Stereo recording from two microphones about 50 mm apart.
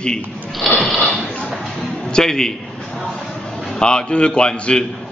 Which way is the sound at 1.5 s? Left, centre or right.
Centre.